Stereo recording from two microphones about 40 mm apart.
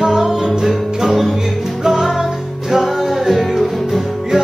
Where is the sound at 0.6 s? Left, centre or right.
Centre.